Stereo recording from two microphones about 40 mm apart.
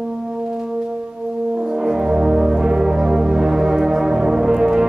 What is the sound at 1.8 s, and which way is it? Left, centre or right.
Brass instrument, centre.